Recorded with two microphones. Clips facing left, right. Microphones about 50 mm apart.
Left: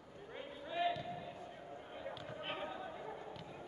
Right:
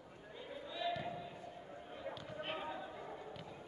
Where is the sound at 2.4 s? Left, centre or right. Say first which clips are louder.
Right 1 dB; centre.